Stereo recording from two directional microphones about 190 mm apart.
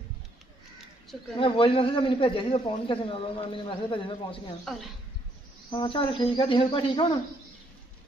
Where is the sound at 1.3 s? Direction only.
30° left (ahead or behind).